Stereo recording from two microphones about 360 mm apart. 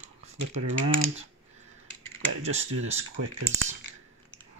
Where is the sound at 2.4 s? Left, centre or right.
Centre.